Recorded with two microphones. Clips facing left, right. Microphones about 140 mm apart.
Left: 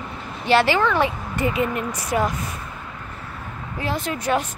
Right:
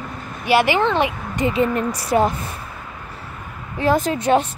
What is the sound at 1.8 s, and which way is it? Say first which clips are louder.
Speech: right 5 dB; 35° right (ahead or behind).